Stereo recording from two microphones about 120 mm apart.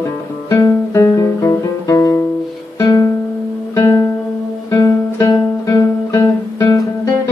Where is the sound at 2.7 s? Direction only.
30° left (ahead or behind).